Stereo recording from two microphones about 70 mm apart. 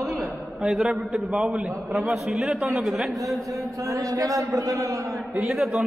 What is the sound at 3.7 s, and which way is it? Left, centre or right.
A man's voice, right.